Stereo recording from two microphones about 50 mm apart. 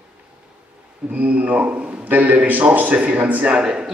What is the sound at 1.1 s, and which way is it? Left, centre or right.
A man's voice, right.